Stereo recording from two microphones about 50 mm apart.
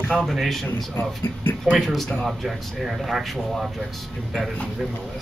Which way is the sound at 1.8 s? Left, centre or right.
Centre.